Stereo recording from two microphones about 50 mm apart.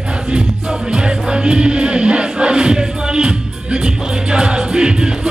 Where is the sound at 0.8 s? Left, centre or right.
Centre.